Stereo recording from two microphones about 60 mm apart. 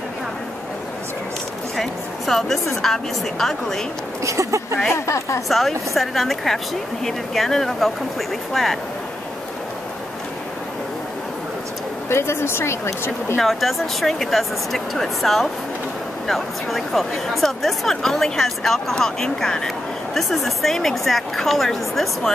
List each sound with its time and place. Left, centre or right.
1.8 s a sound: centre
2.8 s a woman's voice: centre
4.2 s speech: right
4.9 s a woman's voice: left
5.5 s a woman's voice: centre
12.1 s a woman's voice: left
13.4 s a woman's voice: centre